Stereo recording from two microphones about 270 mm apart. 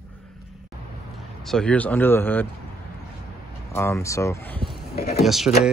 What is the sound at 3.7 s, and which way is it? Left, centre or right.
Speech, centre.